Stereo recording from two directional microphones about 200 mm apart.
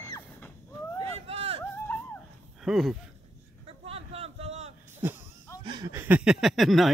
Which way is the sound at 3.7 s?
30° right (ahead or behind).